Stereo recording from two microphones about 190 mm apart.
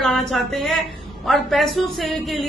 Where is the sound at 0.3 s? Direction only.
Centre (ahead or behind).